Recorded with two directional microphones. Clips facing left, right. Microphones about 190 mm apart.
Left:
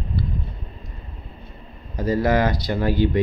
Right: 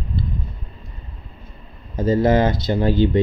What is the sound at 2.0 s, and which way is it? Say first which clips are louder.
Speech: right 3 dB; 25° right (ahead or behind).